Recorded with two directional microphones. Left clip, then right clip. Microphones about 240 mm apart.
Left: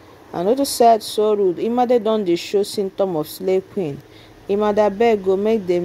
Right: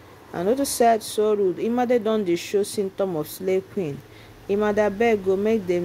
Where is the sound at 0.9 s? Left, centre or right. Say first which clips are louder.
Left 5 dB; centre.